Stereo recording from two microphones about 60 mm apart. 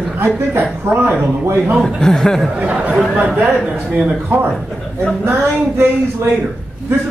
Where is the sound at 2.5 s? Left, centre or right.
Right.